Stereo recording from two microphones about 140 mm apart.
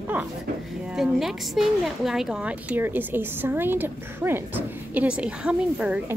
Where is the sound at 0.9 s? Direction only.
Centre (ahead or behind).